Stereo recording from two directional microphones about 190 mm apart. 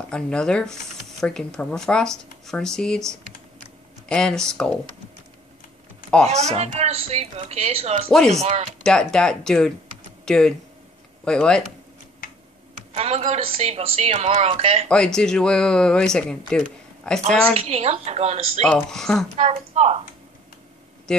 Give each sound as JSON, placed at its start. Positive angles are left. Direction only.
{"t": 0.1, "sound": "speech", "side_deg": 5}
{"t": 6.0, "sound": "typing", "side_deg": 5}
{"t": 6.3, "sound": "a woman's voice", "side_deg": -35}
{"t": 8.8, "sound": "speech", "side_deg": 5}
{"t": 12.9, "sound": "a woman's voice", "side_deg": -35}
{"t": 14.9, "sound": "speech", "side_deg": 5}
{"t": 17.6, "sound": "a woman's voice", "side_deg": -35}
{"t": 18.9, "sound": "speech", "side_deg": 0}
{"t": 19.3, "sound": "a woman's voice", "side_deg": -35}
{"t": 21.1, "sound": "speech", "side_deg": 5}